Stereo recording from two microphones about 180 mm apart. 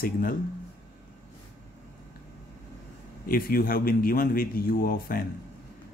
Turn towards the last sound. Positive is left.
turn(degrees=55)  # may be behind; listen again after turning